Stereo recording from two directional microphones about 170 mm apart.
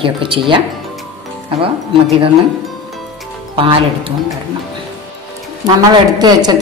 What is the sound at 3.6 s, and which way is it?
Speech, 30° right (ahead or behind).